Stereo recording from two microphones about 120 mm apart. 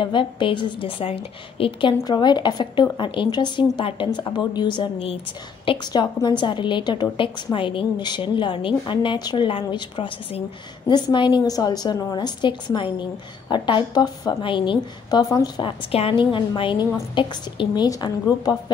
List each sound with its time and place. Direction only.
0.0 s a woman's voice: 45° left (ahead or behind)
15.9 s a woman's voice: 50° left (ahead or behind); by 18.6 s 35° left (ahead or behind)